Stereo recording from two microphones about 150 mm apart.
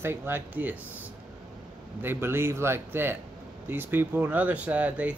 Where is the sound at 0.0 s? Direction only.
15° right (ahead or behind).